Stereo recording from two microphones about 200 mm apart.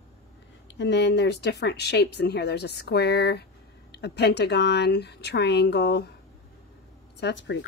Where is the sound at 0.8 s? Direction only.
60° left (ahead or behind).